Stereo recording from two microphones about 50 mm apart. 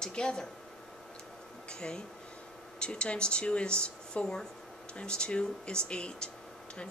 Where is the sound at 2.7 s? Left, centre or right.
Centre.